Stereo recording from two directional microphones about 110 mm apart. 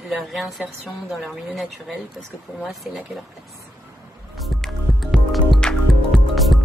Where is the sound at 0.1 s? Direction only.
Centre (ahead or behind).